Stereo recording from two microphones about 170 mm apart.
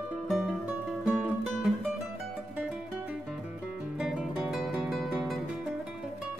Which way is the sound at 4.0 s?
5° right (ahead or behind).